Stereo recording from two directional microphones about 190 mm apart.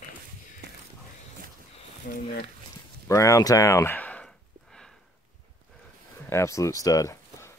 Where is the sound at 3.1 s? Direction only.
15° left (ahead or behind).